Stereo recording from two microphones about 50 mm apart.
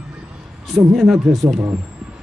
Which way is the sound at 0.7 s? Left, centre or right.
Centre.